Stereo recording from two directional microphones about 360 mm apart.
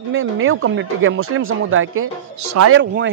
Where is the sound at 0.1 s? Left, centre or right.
Right.